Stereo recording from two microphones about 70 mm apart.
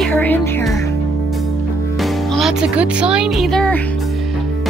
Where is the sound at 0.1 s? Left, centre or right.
Left.